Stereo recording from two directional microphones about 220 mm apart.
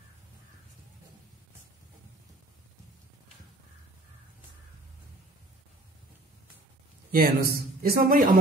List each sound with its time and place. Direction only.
7.1 s speech: 40° right (ahead or behind)